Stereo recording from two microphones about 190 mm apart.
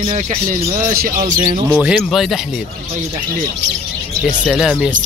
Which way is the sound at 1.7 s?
10° right (ahead or behind).